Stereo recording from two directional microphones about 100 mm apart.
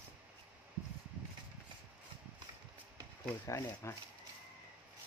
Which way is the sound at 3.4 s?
30° left (ahead or behind).